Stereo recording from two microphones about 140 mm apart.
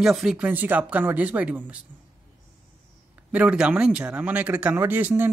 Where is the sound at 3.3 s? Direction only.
10° right (ahead or behind).